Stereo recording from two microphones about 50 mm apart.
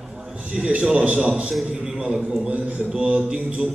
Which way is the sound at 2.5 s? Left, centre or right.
Right.